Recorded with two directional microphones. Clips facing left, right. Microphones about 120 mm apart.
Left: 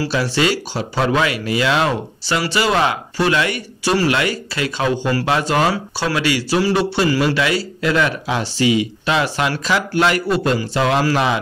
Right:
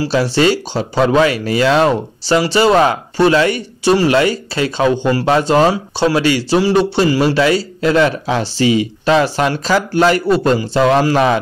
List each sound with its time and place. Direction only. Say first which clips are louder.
0.1 s speech: right 7 dB; 35° right (ahead or behind)